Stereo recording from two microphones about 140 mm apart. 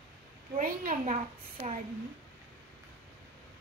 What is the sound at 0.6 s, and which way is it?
Speech, 80° right.